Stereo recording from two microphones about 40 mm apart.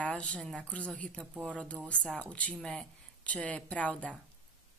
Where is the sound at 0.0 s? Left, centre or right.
Left.